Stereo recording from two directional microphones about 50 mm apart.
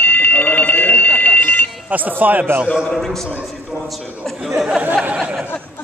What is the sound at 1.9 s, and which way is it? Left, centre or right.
Speech, right.